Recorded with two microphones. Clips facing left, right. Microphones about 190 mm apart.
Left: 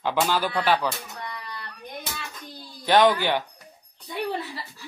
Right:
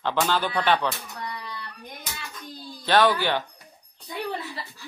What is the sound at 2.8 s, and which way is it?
Speech, 15° left (ahead or behind).